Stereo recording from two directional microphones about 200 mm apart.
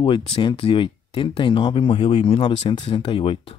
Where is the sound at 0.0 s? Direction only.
30° left (ahead or behind).